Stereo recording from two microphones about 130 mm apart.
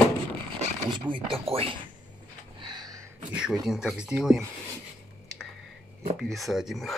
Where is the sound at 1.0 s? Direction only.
40° right (ahead or behind).